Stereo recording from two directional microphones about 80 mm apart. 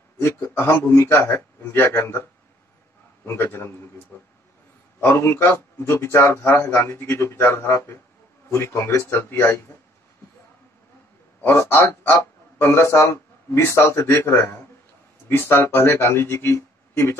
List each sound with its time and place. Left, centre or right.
0.2 s a man's voice: left
3.3 s a man's voice: left
11.7 s a man's voice: left